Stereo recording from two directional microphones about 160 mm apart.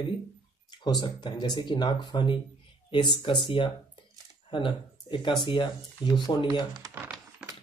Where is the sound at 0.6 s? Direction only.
25° left (ahead or behind).